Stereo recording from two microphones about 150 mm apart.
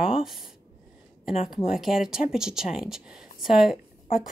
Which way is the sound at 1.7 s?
5° right (ahead or behind).